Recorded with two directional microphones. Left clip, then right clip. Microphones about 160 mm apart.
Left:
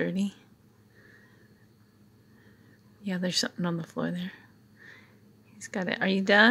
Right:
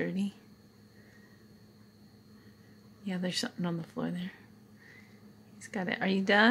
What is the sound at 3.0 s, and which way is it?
Speech, 20° left (ahead or behind).